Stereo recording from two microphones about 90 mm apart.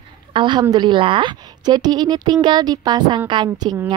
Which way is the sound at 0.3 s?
60° right (ahead or behind).